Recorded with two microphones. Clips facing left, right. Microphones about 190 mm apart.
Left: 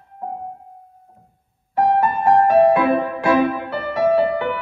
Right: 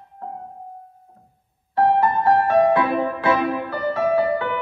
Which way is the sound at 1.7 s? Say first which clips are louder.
Even; 15° left (ahead or behind).